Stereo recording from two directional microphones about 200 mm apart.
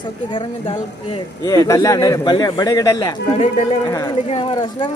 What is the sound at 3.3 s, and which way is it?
Speech, 30° left (ahead or behind).